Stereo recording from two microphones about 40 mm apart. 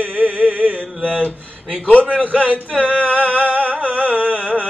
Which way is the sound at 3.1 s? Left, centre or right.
Right.